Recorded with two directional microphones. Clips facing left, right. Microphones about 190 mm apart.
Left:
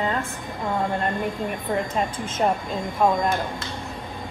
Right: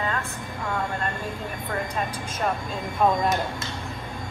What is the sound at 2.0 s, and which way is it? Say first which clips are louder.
Speech: left 4 dB; 20° left (ahead or behind).